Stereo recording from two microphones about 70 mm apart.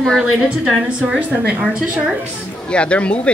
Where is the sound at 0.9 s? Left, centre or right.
Centre.